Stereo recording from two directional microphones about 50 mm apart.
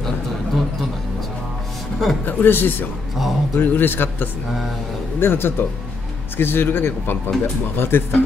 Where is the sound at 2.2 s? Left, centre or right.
Left.